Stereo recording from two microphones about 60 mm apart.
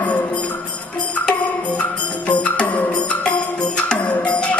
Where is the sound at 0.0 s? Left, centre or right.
Left.